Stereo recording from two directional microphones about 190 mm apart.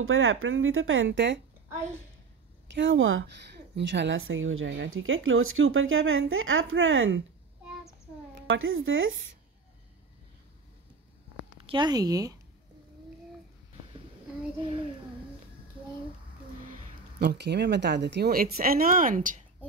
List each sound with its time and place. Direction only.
0.0 s a woman's voice: 90° right; by 1.4 s 75° right (ahead or behind)
2.7 s speech: 80° right
3.7 s a woman's voice: 70° right (ahead or behind); by 7.2 s 90° right
8.5 s a woman's voice: 90° right
11.6 s speech: 25° right (ahead or behind)
17.2 s speech: 60° right (ahead or behind); by 19.4 s 45° right (ahead or behind)